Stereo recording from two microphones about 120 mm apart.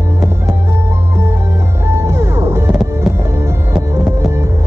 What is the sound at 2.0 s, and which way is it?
Music, 20° right (ahead or behind).